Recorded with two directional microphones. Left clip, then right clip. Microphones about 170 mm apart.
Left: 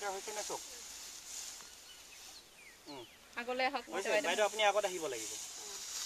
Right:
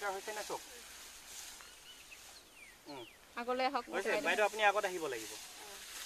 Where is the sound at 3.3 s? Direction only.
75° right (ahead or behind).